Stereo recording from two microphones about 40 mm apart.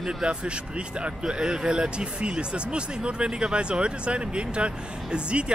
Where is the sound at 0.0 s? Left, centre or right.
Right.